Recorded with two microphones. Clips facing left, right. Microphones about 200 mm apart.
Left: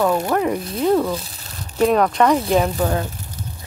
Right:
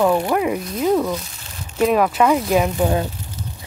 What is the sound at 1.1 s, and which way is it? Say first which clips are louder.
Speech: even; 35° left (ahead or behind).